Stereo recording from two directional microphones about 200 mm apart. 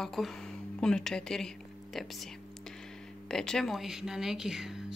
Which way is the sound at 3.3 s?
5° left (ahead or behind).